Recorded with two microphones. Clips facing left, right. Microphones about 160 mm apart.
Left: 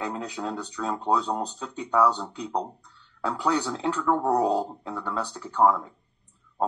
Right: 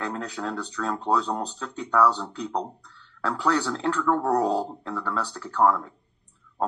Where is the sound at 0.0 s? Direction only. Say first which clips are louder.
Even; 10° left (ahead or behind).